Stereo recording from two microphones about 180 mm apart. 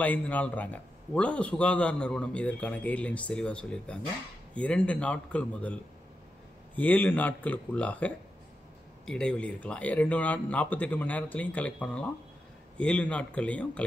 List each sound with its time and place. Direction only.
0.0 s a man's voice: 10° left (ahead or behind)